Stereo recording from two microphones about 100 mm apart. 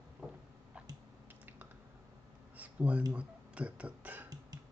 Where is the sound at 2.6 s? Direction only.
15° right (ahead or behind).